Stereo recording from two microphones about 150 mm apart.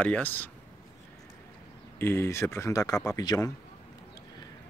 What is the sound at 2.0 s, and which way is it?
Speech, 15° left (ahead or behind).